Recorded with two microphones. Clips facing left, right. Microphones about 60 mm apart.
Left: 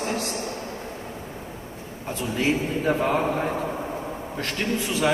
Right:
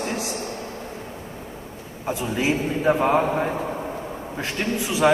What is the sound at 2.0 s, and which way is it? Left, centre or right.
Speech, centre.